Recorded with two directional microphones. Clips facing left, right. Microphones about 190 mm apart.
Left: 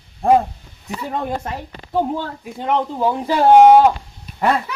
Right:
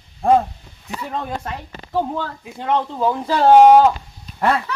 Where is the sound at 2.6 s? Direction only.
15° left (ahead or behind).